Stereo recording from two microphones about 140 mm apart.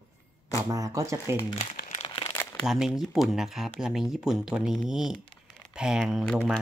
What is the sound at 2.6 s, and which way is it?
Speech, 5° right (ahead or behind).